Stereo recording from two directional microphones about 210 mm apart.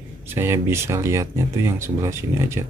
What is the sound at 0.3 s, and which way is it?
Speech, 10° right (ahead or behind).